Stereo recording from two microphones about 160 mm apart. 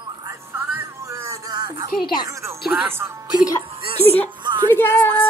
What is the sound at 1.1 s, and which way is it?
Music, 20° right (ahead or behind).